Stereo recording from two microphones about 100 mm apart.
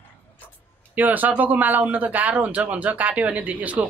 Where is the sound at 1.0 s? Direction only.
15° right (ahead or behind).